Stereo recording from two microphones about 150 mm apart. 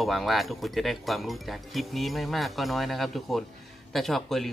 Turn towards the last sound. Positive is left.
turn(degrees=0)  # may be behind; listen again after turning